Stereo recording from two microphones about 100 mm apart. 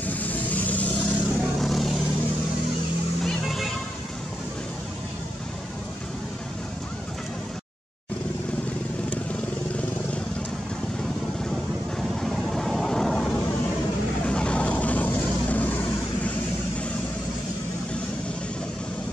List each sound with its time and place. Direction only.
0.0 s vehicle: 15° left (ahead or behind)
1.6 s vehicle: centre (ahead or behind)
3.3 s music: centre (ahead or behind)
11.0 s vehicle: 5° left (ahead or behind)